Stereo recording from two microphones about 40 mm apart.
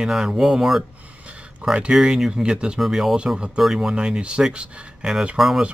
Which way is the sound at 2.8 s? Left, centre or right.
Centre.